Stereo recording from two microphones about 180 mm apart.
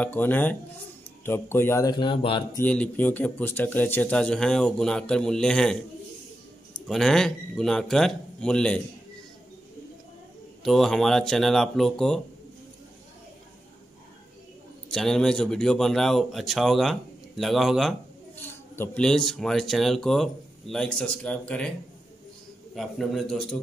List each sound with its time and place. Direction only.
0.0 s speech: 10° left (ahead or behind); by 2.4 s 30° left (ahead or behind)
2.5 s speech: 10° left (ahead or behind)
6.9 s speech: centre (ahead or behind)
10.6 s speech: centre (ahead or behind)
14.9 s speech: 5° left (ahead or behind)
22.8 s speech: centre (ahead or behind)